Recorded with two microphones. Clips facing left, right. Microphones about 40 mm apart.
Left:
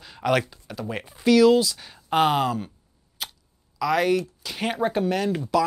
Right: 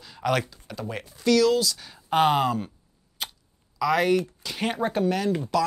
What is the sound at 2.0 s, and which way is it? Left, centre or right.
Speech, centre.